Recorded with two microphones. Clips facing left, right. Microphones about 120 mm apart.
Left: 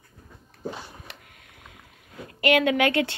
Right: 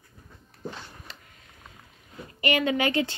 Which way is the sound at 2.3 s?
70° left (ahead or behind).